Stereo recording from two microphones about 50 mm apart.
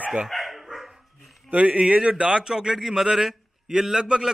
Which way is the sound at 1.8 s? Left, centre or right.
Centre.